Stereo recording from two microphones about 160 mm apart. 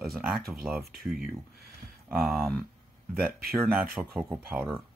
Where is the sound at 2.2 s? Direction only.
Centre (ahead or behind).